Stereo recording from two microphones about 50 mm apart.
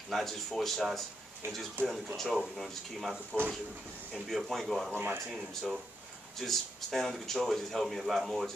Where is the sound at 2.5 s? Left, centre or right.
Centre.